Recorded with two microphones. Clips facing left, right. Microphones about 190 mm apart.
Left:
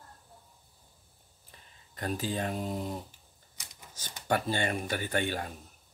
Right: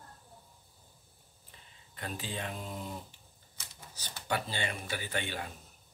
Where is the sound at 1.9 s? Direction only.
45° left (ahead or behind).